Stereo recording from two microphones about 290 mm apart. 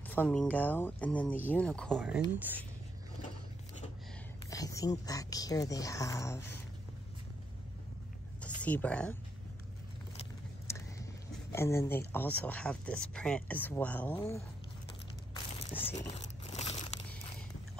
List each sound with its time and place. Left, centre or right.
0.1 s speech: centre
4.5 s speech: centre
8.4 s a sound: centre
10.7 s vehicle: centre
11.5 s speech: centre
15.3 s a sound: centre